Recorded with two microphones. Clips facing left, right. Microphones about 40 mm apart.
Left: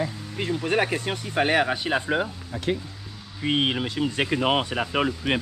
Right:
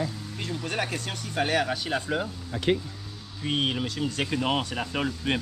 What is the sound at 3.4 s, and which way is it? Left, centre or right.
Speech, left.